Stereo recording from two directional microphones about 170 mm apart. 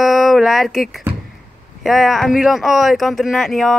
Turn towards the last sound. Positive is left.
turn(degrees=0)  # may be behind; listen again after turning